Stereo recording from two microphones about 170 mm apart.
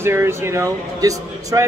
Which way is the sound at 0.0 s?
15° right (ahead or behind).